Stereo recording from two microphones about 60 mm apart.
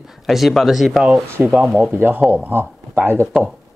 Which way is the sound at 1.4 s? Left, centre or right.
Centre.